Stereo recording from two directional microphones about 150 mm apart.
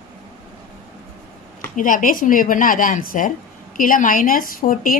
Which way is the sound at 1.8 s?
60° left (ahead or behind).